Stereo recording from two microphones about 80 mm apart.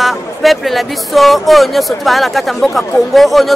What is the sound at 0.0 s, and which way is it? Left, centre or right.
Speech, centre.